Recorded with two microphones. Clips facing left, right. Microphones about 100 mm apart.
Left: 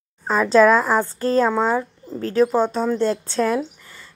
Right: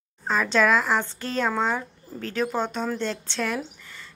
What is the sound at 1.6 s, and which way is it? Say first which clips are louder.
Speech: left 6 dB; 5° left (ahead or behind).